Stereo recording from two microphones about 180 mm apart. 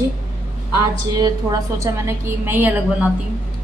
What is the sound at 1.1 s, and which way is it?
A woman's voice, 20° right (ahead or behind).